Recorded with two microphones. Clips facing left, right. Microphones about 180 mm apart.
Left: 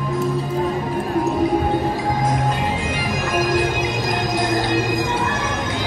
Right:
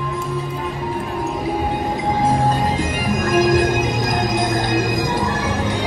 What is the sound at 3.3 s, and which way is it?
Music, 45° right (ahead or behind).